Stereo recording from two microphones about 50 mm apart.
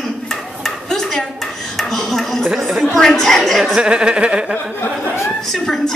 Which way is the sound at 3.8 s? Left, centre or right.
Centre.